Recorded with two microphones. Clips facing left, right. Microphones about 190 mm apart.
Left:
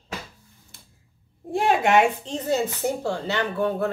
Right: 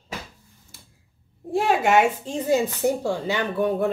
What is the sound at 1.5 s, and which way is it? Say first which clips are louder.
Speech: even; centre (ahead or behind).